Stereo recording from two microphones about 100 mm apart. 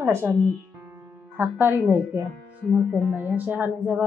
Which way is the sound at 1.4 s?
20° right (ahead or behind).